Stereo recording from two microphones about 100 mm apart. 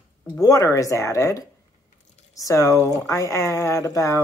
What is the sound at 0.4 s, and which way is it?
Speech, 35° left (ahead or behind).